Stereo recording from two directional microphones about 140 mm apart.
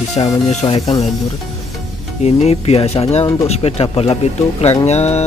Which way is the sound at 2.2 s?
50° left (ahead or behind).